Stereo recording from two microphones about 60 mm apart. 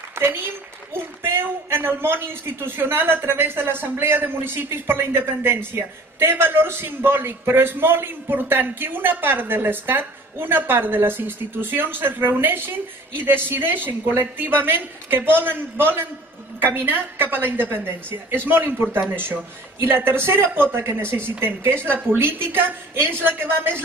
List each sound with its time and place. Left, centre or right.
0.1 s a man's voice: right